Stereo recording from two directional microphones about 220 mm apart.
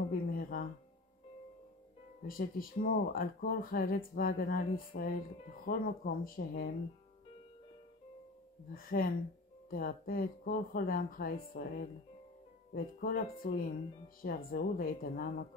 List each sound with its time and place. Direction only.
0.3 s music: 40° left (ahead or behind)
2.2 s speech: 40° left (ahead or behind)
8.7 s speech: 40° left (ahead or behind)